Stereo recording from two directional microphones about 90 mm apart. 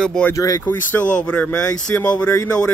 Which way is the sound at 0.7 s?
15° left (ahead or behind).